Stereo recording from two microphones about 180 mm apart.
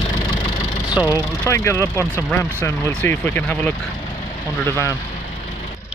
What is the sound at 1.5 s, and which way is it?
Speech, 15° left (ahead or behind).